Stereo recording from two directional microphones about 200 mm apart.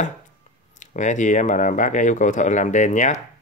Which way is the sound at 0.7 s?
40° left (ahead or behind).